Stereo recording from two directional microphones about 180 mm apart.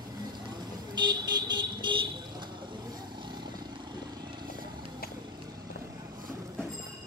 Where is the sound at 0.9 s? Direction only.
25° right (ahead or behind).